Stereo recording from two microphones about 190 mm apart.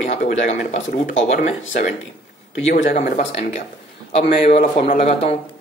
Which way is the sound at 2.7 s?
45° left (ahead or behind).